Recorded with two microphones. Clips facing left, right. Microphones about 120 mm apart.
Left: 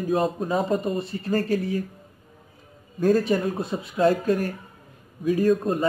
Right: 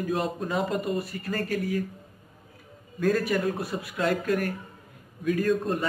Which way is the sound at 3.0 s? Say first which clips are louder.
Left 4 dB; 25° left (ahead or behind).